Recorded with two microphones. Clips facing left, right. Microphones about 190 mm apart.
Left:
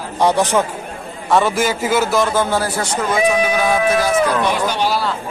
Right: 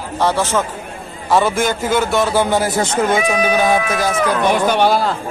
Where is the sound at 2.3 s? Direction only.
15° right (ahead or behind).